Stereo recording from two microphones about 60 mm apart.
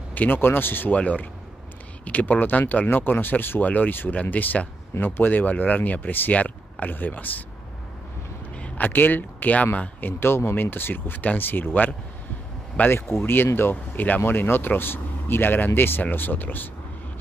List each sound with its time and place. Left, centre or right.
0.1 s speech: left
8.5 s speech: left
12.9 s speech: left